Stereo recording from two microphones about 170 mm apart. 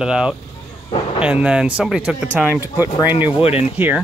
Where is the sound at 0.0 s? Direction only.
5° right (ahead or behind).